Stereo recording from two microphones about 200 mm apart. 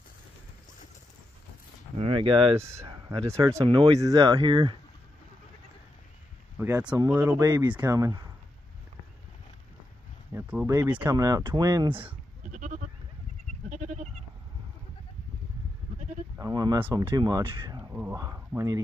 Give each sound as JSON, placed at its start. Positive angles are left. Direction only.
{"t": 2.0, "sound": "speech", "side_deg": -25}
{"t": 2.6, "sound": "speech", "side_deg": -15}
{"t": 6.6, "sound": "speech", "side_deg": -10}
{"t": 10.3, "sound": "speech", "side_deg": -5}
{"t": 12.4, "sound": "goat", "side_deg": -40}
{"t": 16.3, "sound": "a sound", "side_deg": -20}
{"t": 16.8, "sound": "speech", "side_deg": -10}
{"t": 17.1, "sound": "speech", "side_deg": -20}